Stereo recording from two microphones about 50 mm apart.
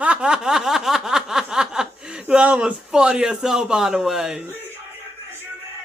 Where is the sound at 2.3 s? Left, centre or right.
Right.